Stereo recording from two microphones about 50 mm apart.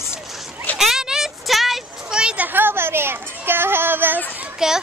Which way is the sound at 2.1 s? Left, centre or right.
Centre.